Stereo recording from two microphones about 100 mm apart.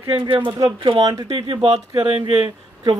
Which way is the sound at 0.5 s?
35° right (ahead or behind).